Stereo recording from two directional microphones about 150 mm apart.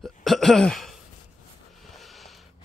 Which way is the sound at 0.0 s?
Centre (ahead or behind).